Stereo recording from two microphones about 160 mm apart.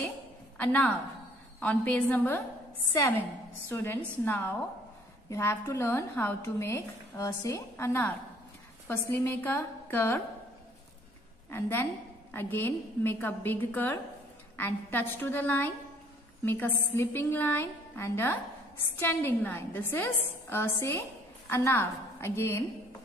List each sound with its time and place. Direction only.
0.6 s a woman's voice: 10° left (ahead or behind)
3.6 s a woman's voice: 15° left (ahead or behind)
11.5 s a woman's voice: 15° left (ahead or behind)